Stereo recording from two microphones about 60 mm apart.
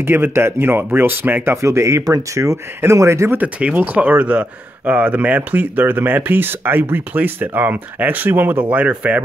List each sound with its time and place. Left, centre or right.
0.0 s speech: right
1.6 s speech: right
3.3 s speech: right